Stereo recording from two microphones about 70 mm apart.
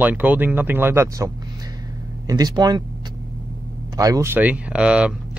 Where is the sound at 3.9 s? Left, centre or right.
Right.